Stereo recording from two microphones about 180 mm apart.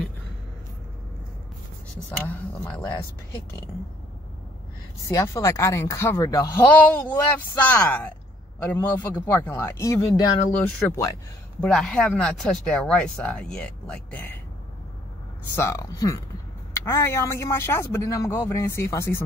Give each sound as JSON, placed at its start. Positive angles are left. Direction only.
{"t": 2.0, "sound": "speech", "side_deg": 10}
{"t": 5.0, "sound": "speech", "side_deg": 15}
{"t": 11.6, "sound": "speech", "side_deg": 5}
{"t": 15.5, "sound": "speech", "side_deg": 15}